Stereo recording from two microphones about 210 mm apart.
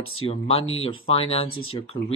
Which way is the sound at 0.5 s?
70° left (ahead or behind).